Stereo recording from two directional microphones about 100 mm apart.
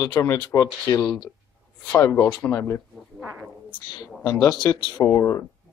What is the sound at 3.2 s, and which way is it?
Speech, 10° right (ahead or behind).